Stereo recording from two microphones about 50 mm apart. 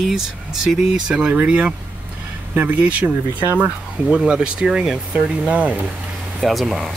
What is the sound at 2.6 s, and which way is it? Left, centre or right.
Speech, right.